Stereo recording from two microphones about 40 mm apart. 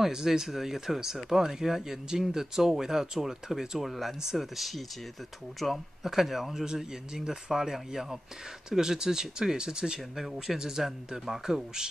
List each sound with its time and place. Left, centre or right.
0.0 s speech: centre
10.1 s speech: centre